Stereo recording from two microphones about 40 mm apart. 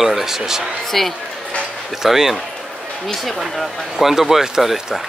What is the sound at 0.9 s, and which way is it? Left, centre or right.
Speech, centre.